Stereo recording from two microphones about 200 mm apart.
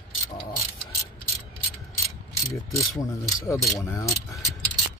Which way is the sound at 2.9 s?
15° left (ahead or behind).